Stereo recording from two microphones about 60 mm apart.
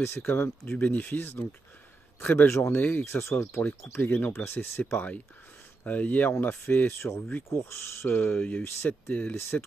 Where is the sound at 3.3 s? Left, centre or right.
Left.